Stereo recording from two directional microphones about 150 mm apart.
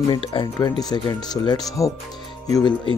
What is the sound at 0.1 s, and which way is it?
Speech, 35° left (ahead or behind).